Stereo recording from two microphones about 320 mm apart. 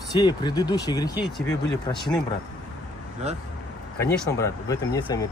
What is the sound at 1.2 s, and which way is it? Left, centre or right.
Speech, centre.